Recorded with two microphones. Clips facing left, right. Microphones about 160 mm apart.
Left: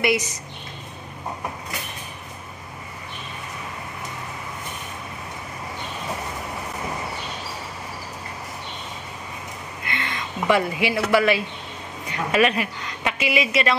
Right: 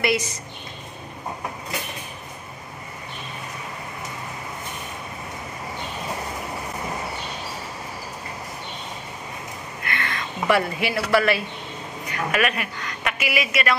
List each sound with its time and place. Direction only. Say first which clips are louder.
0.0 s a woman's voice: left 1 dB; 20° left (ahead or behind)
9.8 s a sound: right 1 dB; 20° left (ahead or behind)
12.1 s speech: left 3 dB; 25° left (ahead or behind)